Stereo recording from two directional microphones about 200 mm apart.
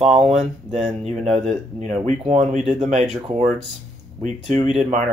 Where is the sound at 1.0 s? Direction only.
35° right (ahead or behind).